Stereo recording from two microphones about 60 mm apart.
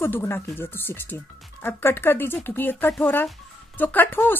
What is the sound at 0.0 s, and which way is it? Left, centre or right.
Speech, left.